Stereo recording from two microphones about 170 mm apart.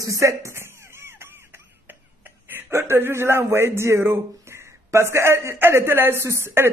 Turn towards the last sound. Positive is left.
turn(degrees=-15)  # may be behind; listen again after turning